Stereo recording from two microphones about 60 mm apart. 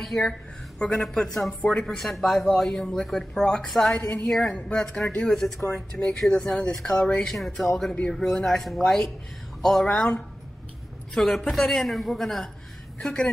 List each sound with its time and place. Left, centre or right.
0.0 s speech: centre
1.9 s speech: centre